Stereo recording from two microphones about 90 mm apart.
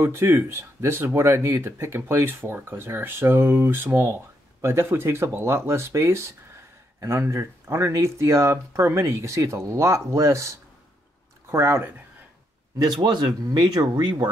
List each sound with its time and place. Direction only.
0.0 s speech: 25° right (ahead or behind)
12.7 s speech: 50° right (ahead or behind)